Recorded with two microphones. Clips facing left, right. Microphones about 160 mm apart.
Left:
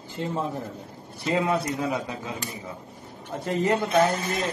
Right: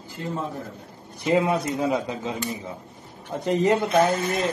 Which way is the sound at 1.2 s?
20° right (ahead or behind).